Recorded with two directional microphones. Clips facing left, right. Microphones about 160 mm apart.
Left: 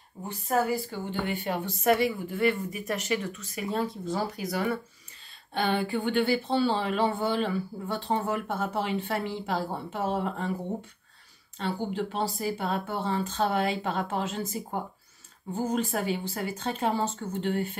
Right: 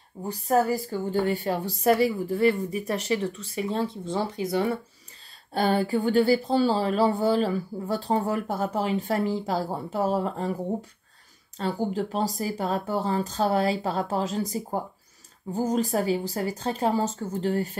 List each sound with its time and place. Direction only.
0.3 s speech: 40° right (ahead or behind)
5.5 s speech: 40° right (ahead or behind)
11.5 s speech: 40° right (ahead or behind)